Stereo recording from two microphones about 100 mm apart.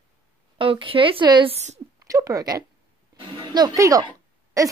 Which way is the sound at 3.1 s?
55° right (ahead or behind).